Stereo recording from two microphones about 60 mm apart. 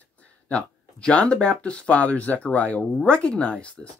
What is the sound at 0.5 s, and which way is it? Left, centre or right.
Speech, centre.